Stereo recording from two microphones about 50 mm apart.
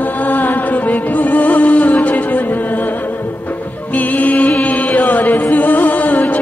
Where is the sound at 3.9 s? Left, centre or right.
Left.